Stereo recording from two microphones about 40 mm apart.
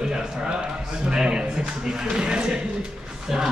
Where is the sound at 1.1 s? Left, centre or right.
Centre.